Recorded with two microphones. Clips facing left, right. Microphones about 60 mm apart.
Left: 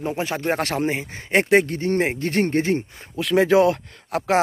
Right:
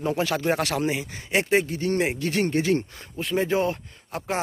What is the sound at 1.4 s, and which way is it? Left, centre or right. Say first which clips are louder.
Speech: left 6 dB; left.